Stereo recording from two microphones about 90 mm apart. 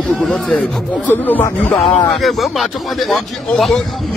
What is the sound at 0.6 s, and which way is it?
Speech, 20° left (ahead or behind).